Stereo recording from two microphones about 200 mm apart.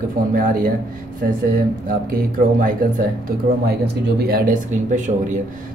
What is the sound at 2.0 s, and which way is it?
Speech, 45° right (ahead or behind).